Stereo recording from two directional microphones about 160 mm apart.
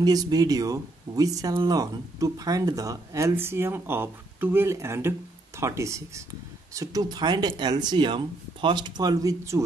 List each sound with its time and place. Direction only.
0.0 s speech: 25° right (ahead or behind)